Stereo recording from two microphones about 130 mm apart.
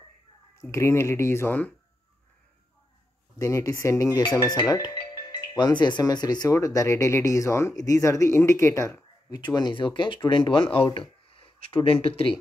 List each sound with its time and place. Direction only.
0.6 s speech: 20° left (ahead or behind)
3.3 s speech: 25° left (ahead or behind)
9.4 s speech: 35° left (ahead or behind)